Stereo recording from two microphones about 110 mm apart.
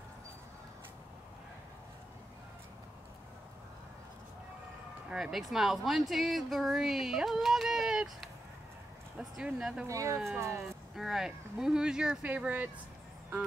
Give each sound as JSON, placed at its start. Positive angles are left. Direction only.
{"t": 5.1, "sound": "a woman's voice", "side_deg": -5}
{"t": 9.8, "sound": "speech", "side_deg": -30}
{"t": 10.6, "sound": "a woman's voice", "side_deg": -5}